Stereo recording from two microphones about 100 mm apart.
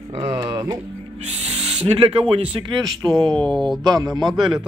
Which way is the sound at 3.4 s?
Centre (ahead or behind).